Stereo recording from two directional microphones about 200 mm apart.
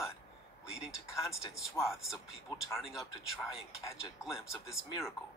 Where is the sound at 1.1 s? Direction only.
15° left (ahead or behind).